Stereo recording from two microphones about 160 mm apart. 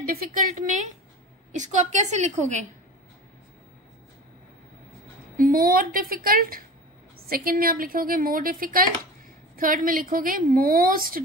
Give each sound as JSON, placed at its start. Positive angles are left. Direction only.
{"t": 0.0, "sound": "a woman's voice", "side_deg": -65}
{"t": 5.4, "sound": "speech", "side_deg": -65}